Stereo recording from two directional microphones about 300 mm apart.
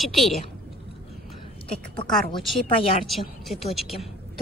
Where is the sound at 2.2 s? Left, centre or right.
Centre.